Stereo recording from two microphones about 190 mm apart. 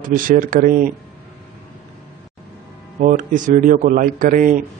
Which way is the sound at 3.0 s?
40° right (ahead or behind).